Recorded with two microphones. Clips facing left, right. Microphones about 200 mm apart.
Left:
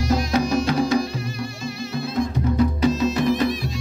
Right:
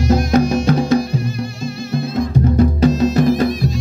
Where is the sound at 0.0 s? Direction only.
50° right (ahead or behind).